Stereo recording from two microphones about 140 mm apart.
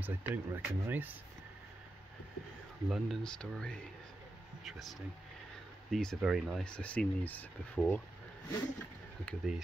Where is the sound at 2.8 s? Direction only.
Centre (ahead or behind).